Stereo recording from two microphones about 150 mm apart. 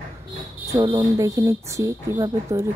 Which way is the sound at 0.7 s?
25° right (ahead or behind).